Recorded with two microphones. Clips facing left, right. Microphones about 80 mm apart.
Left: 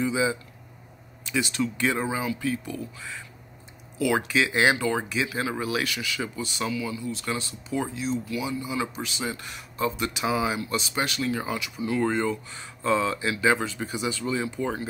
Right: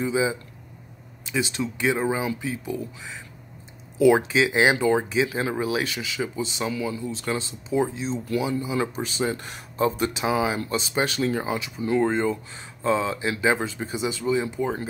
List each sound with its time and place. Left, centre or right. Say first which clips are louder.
0.0 s speech: right 1 dB; right